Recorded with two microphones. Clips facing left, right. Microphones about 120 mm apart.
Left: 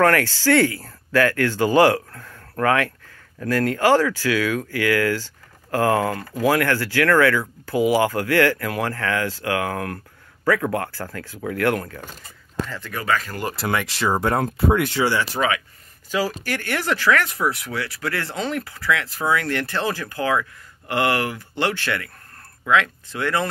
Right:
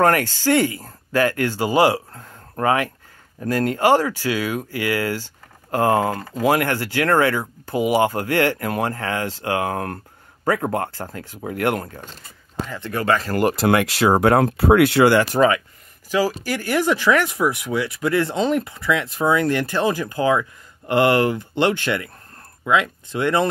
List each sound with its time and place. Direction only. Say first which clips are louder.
0.0 s speech: even; 20° right (ahead or behind)
2.2 s a sound: right 1 dB; 25° right (ahead or behind)
3.3 s speech: even; 20° right (ahead or behind)
12.9 s speech: right 3 dB; 30° right (ahead or behind)
13.3 s speech: right 7 dB; 60° right (ahead or behind)
16.4 s speech: right 4 dB; 15° right (ahead or behind)